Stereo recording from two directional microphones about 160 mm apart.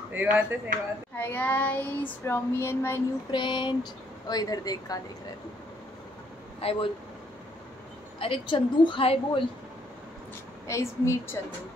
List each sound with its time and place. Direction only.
0.1 s speech: 10° right (ahead or behind)
1.1 s child singing: 10° left (ahead or behind)
3.3 s speech: 30° left (ahead or behind)
6.6 s a woman's voice: 35° left (ahead or behind)
8.2 s a woman's voice: 30° left (ahead or behind)
10.7 s child singing: 15° left (ahead or behind)